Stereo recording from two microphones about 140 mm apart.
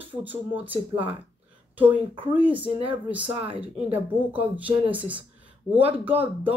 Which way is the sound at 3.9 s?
10° right (ahead or behind).